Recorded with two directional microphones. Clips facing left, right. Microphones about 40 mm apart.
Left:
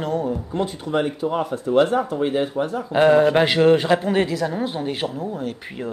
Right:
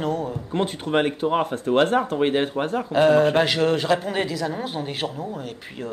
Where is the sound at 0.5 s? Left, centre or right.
Right.